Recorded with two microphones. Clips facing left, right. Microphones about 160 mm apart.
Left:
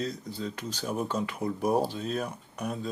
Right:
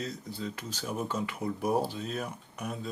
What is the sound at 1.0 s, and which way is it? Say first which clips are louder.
Speech: left 2 dB; 30° left (ahead or behind).